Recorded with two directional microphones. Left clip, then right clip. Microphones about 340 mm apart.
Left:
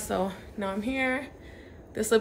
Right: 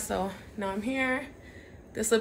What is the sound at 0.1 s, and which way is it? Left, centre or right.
A woman's voice, centre.